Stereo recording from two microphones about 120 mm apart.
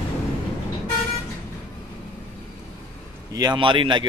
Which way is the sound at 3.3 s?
30° right (ahead or behind).